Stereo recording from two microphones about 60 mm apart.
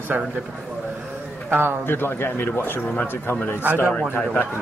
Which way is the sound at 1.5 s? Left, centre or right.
Right.